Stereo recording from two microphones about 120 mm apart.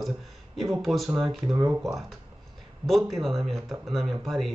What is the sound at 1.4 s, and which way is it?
Speech, 20° right (ahead or behind).